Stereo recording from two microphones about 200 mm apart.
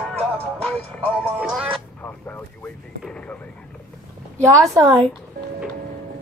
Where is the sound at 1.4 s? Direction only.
5° right (ahead or behind).